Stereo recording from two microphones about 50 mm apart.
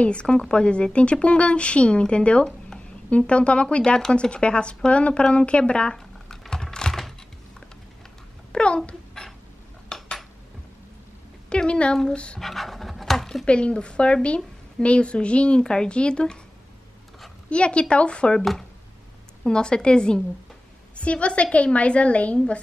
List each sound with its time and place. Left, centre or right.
0.0 s a woman's voice: left; by 7.2 s centre
8.5 s a sound: centre
9.2 s a sound: centre
9.9 s dishes: centre
11.4 s a woman's voice: centre
12.4 s pant: centre
13.5 s a woman's voice: left
17.5 s a woman's voice: left
18.4 s speech: centre
19.4 s a woman's voice: centre